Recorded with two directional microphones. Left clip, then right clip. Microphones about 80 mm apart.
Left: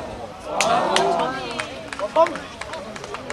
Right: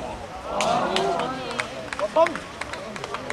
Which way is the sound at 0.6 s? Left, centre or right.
Left.